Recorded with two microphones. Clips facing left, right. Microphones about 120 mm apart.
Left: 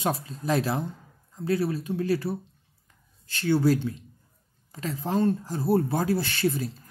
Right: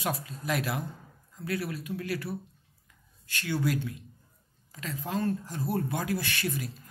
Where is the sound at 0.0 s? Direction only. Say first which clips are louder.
Left 5 dB; 30° left (ahead or behind).